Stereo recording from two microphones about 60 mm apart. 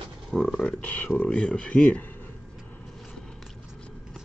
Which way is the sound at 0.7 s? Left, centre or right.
Left.